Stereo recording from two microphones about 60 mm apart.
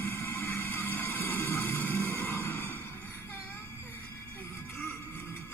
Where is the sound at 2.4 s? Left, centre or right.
Left.